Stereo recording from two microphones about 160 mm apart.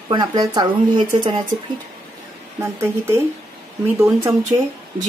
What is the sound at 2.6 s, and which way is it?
Speech, 15° right (ahead or behind).